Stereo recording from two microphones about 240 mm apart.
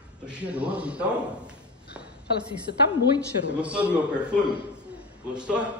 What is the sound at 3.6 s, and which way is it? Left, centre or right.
A man's voice, centre.